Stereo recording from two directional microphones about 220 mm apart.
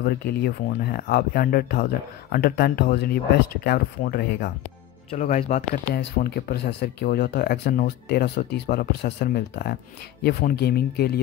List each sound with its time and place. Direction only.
0.0 s speech: 45° left (ahead or behind)
5.1 s speech: 35° left (ahead or behind)
5.9 s speech: 45° left (ahead or behind)